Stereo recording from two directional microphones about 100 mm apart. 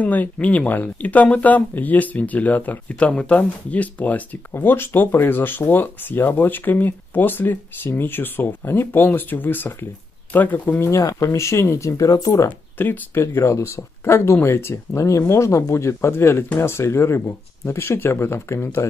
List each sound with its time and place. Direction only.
0.0 s speech: 15° left (ahead or behind); by 12.4 s 35° left (ahead or behind)
12.4 s speech: 20° left (ahead or behind)